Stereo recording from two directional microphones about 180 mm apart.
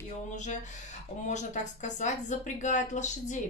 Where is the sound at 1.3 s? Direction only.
40° left (ahead or behind).